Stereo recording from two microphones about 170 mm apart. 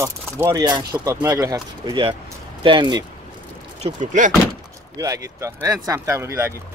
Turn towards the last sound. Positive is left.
turn(degrees=-15)  # may be behind; listen again after turning